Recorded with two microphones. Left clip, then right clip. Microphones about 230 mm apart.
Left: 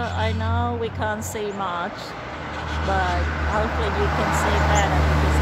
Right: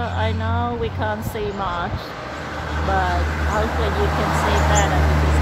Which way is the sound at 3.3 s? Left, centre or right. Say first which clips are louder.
Right 2 dB; right.